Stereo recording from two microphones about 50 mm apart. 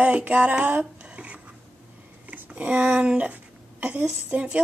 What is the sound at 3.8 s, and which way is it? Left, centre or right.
Speech, right.